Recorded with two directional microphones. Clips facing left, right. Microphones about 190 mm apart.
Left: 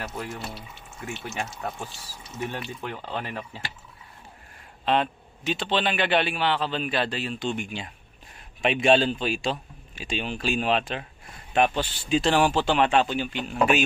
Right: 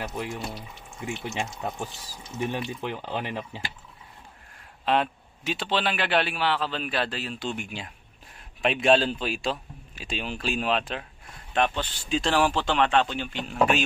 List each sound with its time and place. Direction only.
0.0 s speech: 15° right (ahead or behind)
4.8 s a man's voice: 5° right (ahead or behind)